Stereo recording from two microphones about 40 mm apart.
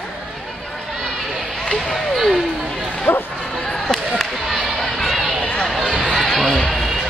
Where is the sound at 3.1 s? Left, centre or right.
Left.